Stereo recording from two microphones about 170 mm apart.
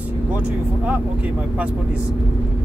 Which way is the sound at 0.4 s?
10° right (ahead or behind).